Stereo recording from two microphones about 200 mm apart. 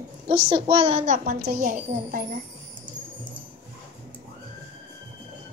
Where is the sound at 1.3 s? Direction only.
50° right (ahead or behind).